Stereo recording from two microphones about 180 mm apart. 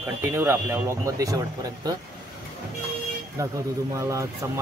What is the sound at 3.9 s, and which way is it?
Speech, 15° right (ahead or behind).